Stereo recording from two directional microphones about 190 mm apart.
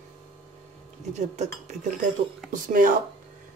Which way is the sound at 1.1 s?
35° right (ahead or behind).